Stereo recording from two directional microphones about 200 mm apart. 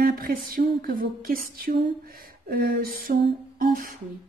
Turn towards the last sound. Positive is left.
turn(degrees=-45)  # may be behind; listen again after turning